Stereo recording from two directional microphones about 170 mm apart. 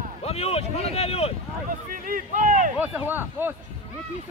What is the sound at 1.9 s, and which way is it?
Speech, 55° right (ahead or behind).